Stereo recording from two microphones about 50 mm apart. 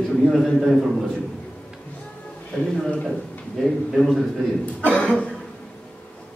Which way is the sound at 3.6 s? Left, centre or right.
Centre.